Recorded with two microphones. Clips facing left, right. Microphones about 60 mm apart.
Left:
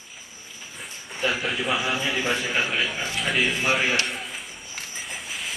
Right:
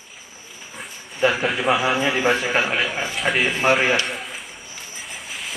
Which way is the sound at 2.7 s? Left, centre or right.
Centre.